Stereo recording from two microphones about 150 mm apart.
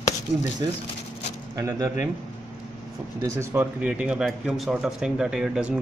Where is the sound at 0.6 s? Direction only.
25° right (ahead or behind).